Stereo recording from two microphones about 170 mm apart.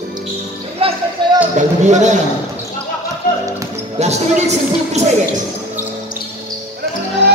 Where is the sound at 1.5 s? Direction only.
45° right (ahead or behind).